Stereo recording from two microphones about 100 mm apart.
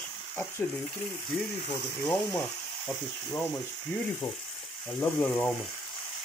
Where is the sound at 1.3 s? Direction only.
Centre (ahead or behind).